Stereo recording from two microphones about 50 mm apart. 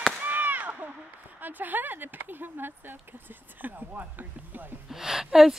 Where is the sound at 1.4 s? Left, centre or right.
Right.